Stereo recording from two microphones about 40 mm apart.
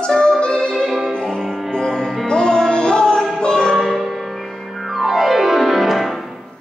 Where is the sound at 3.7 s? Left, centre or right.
Centre.